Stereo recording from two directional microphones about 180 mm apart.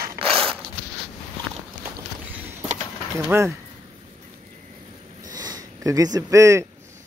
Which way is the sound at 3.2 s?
15° right (ahead or behind).